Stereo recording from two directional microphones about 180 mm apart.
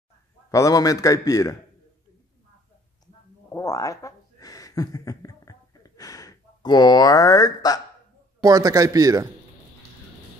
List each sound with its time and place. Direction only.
0.5 s a man's voice: 20° left (ahead or behind)
3.5 s a sound: 20° left (ahead or behind)
8.4 s a man's voice: 20° right (ahead or behind)